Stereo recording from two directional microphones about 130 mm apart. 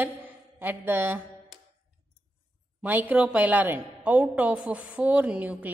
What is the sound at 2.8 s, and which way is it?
A woman's voice, 15° right (ahead or behind).